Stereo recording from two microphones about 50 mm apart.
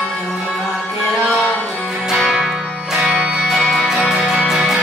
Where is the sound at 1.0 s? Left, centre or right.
Centre.